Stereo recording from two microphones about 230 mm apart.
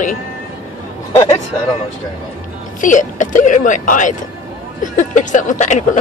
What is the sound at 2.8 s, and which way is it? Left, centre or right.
Speech, left.